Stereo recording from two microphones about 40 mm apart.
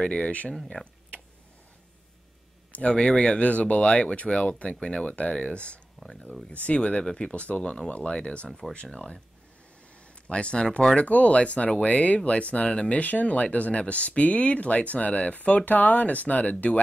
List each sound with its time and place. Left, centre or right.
0.0 s speech: left
2.7 s speech: left
3.4 s speech: left
6.0 s speech: centre
6.5 s speech: left
7.3 s speech: left
8.5 s speech: centre
10.2 s speech: left